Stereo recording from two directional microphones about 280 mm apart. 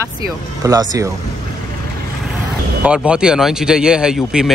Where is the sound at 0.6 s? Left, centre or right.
Centre.